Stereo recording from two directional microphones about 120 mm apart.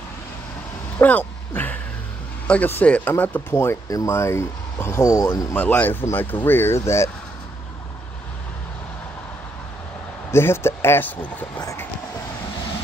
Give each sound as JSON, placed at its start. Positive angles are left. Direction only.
{"t": 0.9, "sound": "a sound", "side_deg": 15}
{"t": 2.4, "sound": "speech", "side_deg": 10}
{"t": 10.3, "sound": "speech", "side_deg": 20}
{"t": 11.6, "sound": "speech", "side_deg": 25}